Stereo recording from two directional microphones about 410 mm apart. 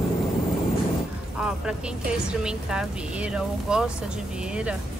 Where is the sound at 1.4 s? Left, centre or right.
Centre.